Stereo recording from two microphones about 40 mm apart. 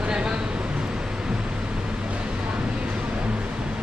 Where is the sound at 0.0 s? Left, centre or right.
Right.